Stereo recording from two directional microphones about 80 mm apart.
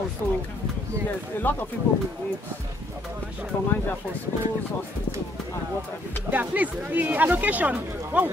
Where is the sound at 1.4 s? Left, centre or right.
Left.